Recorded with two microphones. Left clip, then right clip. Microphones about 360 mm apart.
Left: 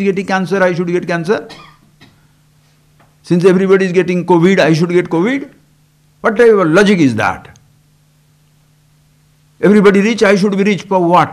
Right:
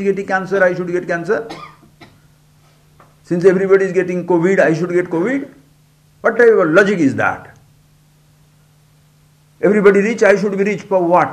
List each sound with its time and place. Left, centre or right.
0.0 s a man's voice: left
3.3 s a man's voice: left
9.6 s a man's voice: left